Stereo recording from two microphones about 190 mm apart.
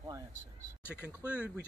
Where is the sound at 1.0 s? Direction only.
5° right (ahead or behind).